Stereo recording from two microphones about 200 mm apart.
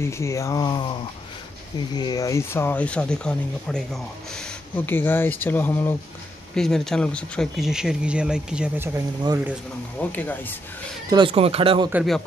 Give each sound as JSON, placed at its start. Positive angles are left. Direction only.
{"t": 0.0, "sound": "speech", "side_deg": 15}
{"t": 2.0, "sound": "speech", "side_deg": 20}
{"t": 9.9, "sound": "speech", "side_deg": 10}
{"t": 11.1, "sound": "speech", "side_deg": -25}
{"t": 11.9, "sound": "speech", "side_deg": 0}